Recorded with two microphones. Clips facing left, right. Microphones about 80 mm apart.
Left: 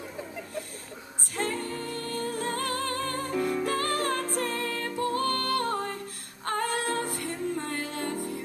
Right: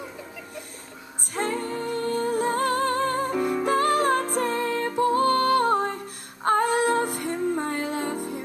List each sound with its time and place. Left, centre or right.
1.4 s music: centre